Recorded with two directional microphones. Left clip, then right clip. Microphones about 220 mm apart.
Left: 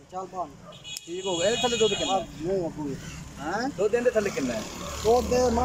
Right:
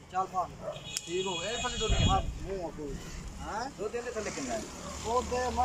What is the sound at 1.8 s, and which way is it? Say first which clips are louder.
Speech: left 11 dB; 45° left (ahead or behind).